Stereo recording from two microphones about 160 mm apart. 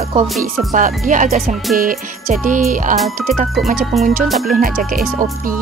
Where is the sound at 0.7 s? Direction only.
55° right (ahead or behind).